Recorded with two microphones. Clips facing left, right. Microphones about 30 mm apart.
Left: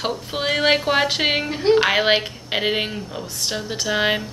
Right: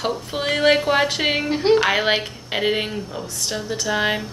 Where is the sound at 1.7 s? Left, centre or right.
Centre.